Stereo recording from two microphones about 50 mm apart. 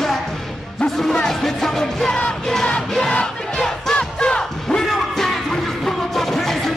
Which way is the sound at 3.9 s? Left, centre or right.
Centre.